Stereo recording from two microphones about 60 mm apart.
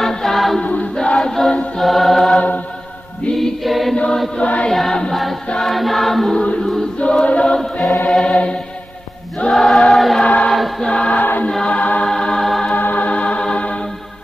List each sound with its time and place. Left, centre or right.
0.0 s music: centre
0.6 s choir: left
0.9 s choir: centre
1.8 s music: centre
3.9 s music: centre
4.6 s choir: centre
6.3 s choir: centre
8.1 s music: centre
9.5 s choir: centre
10.2 s choir: left
10.5 s choir: centre
10.9 s choir: centre
12.1 s music: centre
12.7 s music: left